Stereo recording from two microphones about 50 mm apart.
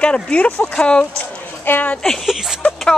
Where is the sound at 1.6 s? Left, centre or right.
Left.